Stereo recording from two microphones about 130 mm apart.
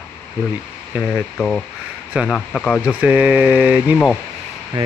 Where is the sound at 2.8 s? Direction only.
10° right (ahead or behind).